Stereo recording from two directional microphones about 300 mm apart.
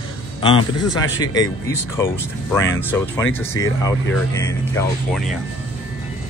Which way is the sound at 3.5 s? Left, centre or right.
Centre.